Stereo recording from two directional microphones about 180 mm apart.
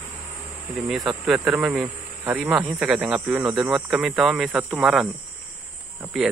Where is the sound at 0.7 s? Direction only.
Centre (ahead or behind).